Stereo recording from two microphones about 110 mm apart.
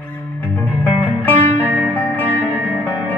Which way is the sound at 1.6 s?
15° right (ahead or behind).